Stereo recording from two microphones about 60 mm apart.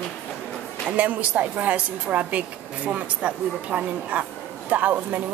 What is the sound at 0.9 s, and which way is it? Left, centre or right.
A woman's voice, right.